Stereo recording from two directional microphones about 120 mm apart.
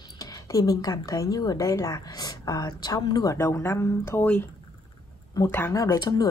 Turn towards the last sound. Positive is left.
turn(degrees=30)  # may be behind; listen again after turning